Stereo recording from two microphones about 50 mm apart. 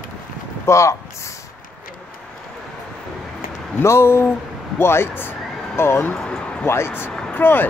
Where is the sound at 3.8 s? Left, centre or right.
Left.